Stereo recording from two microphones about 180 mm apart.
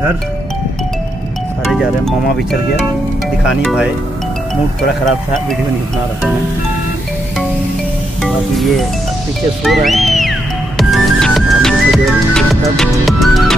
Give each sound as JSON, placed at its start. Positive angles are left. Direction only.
{"t": 3.4, "sound": "speech", "side_deg": -5}
{"t": 8.2, "sound": "music", "side_deg": 0}
{"t": 9.6, "sound": "speech", "side_deg": 0}
{"t": 10.8, "sound": "music", "side_deg": 0}